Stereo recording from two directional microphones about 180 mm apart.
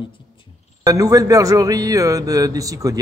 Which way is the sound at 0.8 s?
20° right (ahead or behind).